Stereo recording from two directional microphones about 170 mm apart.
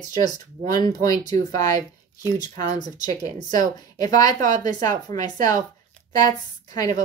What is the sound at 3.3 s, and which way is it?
Speech, 25° left (ahead or behind).